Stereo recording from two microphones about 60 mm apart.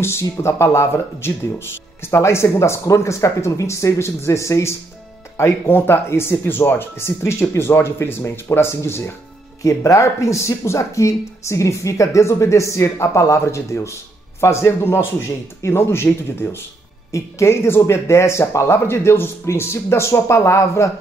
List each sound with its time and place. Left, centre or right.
0.0 s speech: left
5.4 s speech: left
9.6 s speech: left
18.7 s speech: left